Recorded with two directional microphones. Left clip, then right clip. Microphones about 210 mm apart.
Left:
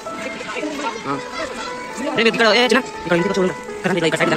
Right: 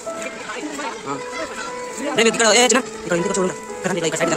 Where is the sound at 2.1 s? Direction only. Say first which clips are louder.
Left 1 dB; 15° right (ahead or behind).